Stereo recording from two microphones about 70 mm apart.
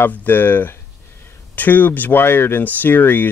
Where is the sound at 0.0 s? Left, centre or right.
Left.